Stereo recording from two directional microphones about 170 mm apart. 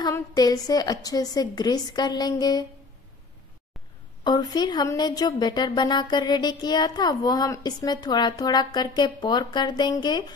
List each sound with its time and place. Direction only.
0.0 s speech: 20° left (ahead or behind)
4.2 s speech: 20° left (ahead or behind)